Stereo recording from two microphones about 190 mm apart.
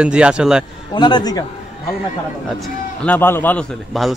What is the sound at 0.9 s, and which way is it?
Speech, 25° left (ahead or behind).